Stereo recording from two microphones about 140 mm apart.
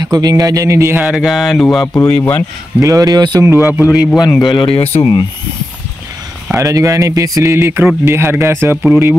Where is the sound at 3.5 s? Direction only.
15° right (ahead or behind).